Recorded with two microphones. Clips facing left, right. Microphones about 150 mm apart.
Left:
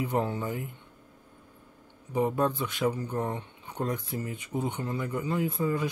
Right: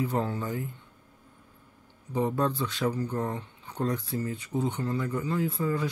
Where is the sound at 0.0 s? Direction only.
20° left (ahead or behind).